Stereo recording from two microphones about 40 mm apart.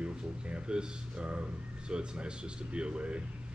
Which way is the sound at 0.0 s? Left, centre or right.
Right.